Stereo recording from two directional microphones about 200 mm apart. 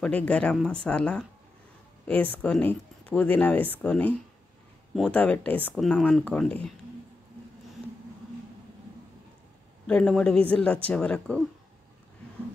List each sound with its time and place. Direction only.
0.0 s speech: 5° left (ahead or behind)
9.8 s speech: 5° left (ahead or behind)